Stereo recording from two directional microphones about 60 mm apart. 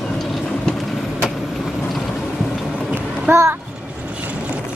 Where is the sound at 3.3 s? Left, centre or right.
Right.